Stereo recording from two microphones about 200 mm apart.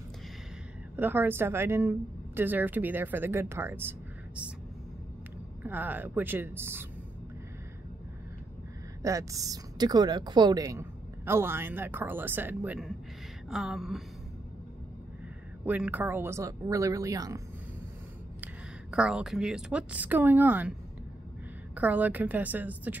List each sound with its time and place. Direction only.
0.9 s a woman's voice: 10° right (ahead or behind)
5.6 s a woman's voice: 10° right (ahead or behind)
9.0 s a woman's voice: 15° right (ahead or behind)
13.5 s a sound: centre (ahead or behind)
15.6 s a woman's voice: 10° right (ahead or behind)
18.4 s a woman's voice: 5° right (ahead or behind)
21.7 s a woman's voice: 10° right (ahead or behind)